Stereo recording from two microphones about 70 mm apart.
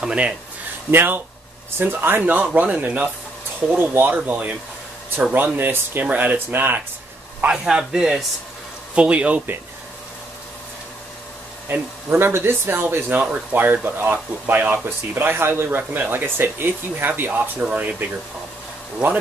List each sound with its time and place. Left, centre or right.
0.1 s speech: centre
0.9 s speech: right
7.4 s speech: centre
11.7 s speech: right